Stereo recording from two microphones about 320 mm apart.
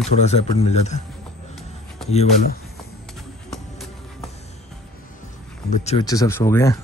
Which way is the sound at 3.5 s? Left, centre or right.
Centre.